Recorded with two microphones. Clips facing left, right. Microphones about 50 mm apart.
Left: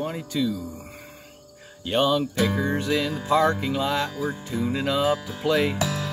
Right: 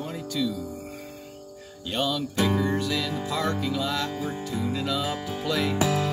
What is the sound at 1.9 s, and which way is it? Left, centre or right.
Music, left.